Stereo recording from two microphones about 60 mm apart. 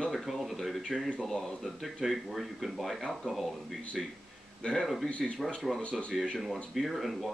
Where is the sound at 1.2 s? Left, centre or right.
Centre.